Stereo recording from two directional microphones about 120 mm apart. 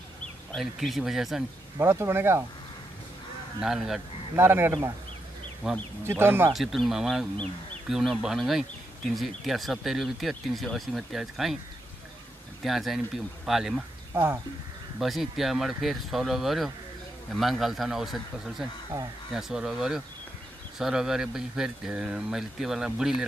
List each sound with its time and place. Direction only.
0.6 s speech: centre (ahead or behind)
1.8 s speech: 20° right (ahead or behind)
3.6 s speech: centre (ahead or behind)
4.4 s speech: 20° right (ahead or behind)
5.6 s speech: 5° right (ahead or behind)
6.0 s speech: 20° right (ahead or behind)
6.5 s speech: centre (ahead or behind)
12.6 s speech: centre (ahead or behind)
14.1 s speech: 20° right (ahead or behind)
15.0 s speech: centre (ahead or behind)